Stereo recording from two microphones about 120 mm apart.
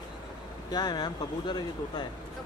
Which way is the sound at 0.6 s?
35° left (ahead or behind).